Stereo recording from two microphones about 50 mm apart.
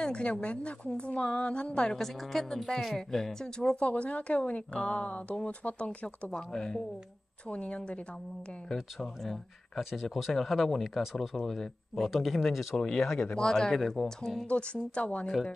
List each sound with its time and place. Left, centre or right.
0.0 s a woman's voice: centre
2.0 s speech: centre
3.8 s a woman's voice: left
8.7 s speech: centre
14.5 s a woman's voice: left